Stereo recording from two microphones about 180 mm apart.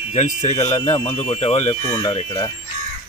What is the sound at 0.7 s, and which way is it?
Speech, 20° left (ahead or behind).